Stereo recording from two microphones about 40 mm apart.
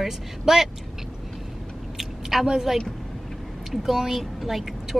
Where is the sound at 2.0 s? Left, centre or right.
Centre.